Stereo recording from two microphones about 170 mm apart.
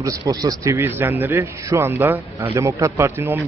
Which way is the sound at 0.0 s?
20° right (ahead or behind).